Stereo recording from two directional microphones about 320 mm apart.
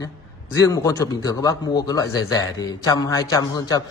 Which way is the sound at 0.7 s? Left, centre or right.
Centre.